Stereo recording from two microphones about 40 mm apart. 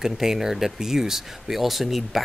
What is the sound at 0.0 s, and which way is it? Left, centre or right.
Speech, centre.